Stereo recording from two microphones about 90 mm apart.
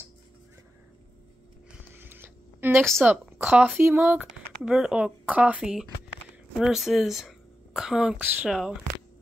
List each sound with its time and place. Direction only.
2.0 s a sound: 25° right (ahead or behind)
3.0 s speech: 20° right (ahead or behind)
4.3 s a woman's voice: 5° right (ahead or behind)
8.2 s speech: 20° right (ahead or behind)
8.5 s speech: 5° right (ahead or behind)